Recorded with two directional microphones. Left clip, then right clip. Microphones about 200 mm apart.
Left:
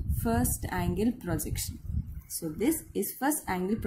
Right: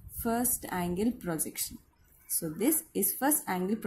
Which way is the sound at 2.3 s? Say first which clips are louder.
Left 1 dB; 15° right (ahead or behind).